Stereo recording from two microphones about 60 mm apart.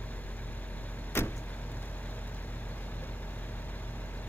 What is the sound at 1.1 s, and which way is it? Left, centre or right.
Vehicle, left.